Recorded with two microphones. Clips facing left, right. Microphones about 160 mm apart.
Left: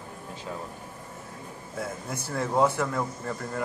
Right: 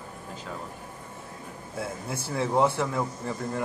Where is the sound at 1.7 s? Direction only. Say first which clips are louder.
Right 1 dB; 5° right (ahead or behind).